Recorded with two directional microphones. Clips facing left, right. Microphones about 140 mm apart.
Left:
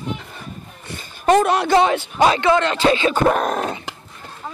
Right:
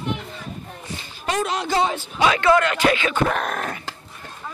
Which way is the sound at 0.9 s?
55° left (ahead or behind).